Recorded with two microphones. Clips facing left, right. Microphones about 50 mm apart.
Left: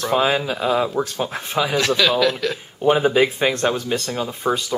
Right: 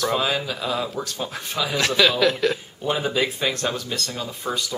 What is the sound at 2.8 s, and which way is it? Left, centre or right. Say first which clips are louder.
Speech: left 9 dB; left.